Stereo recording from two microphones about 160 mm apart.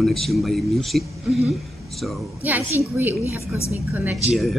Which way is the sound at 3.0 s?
10° right (ahead or behind).